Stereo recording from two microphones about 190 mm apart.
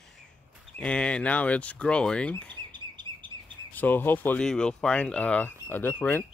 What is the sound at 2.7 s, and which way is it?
Chirp, 25° right (ahead or behind).